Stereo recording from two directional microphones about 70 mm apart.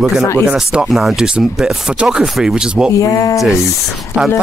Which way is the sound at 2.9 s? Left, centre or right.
Left.